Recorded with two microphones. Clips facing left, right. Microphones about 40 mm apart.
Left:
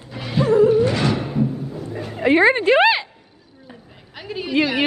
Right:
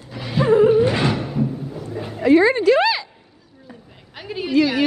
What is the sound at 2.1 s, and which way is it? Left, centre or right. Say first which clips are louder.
Speech: right 1 dB; left.